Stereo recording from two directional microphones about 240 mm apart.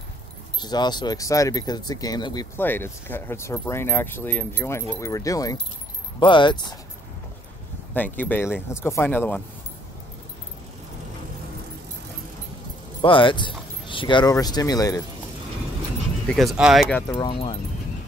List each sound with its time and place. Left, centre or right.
0.6 s speech: centre
7.9 s speech: centre
13.0 s speech: left
16.3 s speech: centre
17.1 s speech: centre